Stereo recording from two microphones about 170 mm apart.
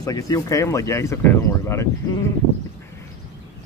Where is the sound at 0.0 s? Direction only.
20° left (ahead or behind).